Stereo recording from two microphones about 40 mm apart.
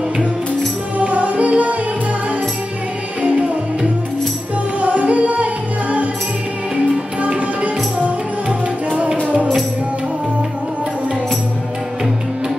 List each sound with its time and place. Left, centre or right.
0.9 s music: right
3.2 s music: right
4.7 s music: right
7.2 s music: right